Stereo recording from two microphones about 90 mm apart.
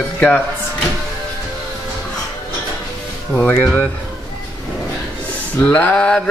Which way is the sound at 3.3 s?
15° left (ahead or behind).